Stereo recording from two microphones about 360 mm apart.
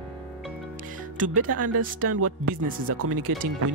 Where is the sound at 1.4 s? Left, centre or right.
Right.